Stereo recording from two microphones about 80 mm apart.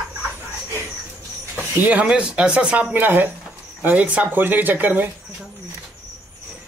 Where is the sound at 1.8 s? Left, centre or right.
Centre.